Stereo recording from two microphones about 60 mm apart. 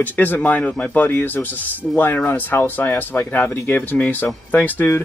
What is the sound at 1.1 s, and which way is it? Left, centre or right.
Speech, left.